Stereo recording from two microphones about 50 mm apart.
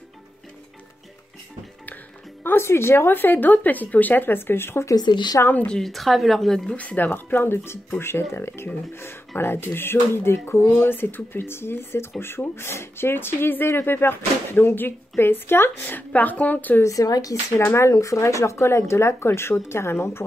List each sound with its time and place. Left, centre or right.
2.4 s speech: left
5.9 s a woman's voice: centre
6.7 s speech: left
7.2 s a woman's voice: left
16.8 s speech: left
17.6 s speech: left